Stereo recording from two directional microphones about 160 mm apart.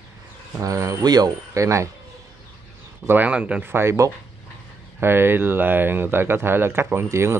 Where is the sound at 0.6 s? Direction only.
20° right (ahead or behind).